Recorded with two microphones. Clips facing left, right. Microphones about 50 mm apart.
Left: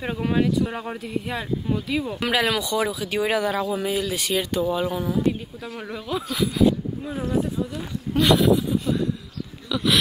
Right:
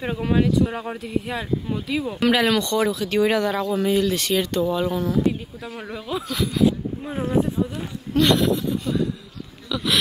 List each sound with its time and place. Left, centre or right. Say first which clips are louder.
0.0 s speech: right 1 dB; centre
5.8 s speech: even; centre
7.1 s speech: right 3 dB; right
8.1 s speech: left 1 dB; centre